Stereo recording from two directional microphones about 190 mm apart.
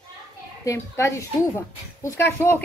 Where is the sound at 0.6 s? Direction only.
15° left (ahead or behind).